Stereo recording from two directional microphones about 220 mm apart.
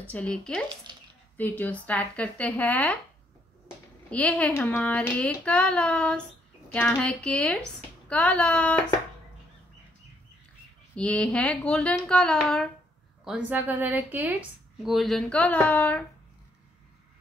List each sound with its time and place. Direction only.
0.0 s child singing: 5° left (ahead or behind)
0.9 s a sound: 20° right (ahead or behind)
1.3 s speech: 5° left (ahead or behind)
4.1 s child singing: 5° left (ahead or behind)
11.0 s child singing: 5° left (ahead or behind)
13.2 s speech: 5° right (ahead or behind)
14.9 s child singing: centre (ahead or behind)